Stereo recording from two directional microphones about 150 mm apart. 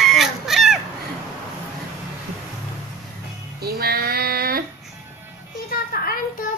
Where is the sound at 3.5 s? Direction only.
90° right.